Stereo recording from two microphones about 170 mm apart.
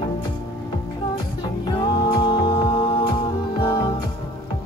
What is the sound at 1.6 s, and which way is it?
Music, 25° left (ahead or behind).